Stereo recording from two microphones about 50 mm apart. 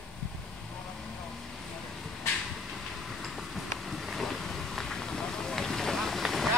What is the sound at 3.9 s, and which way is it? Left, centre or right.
Vehicle, centre.